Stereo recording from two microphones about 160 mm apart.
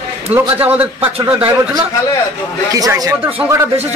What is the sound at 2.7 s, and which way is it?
Speech, 20° right (ahead or behind).